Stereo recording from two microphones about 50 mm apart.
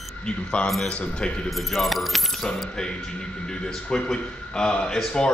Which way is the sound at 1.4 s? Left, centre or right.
Centre.